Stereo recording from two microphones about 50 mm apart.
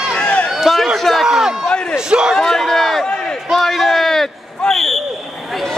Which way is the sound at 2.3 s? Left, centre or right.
Centre.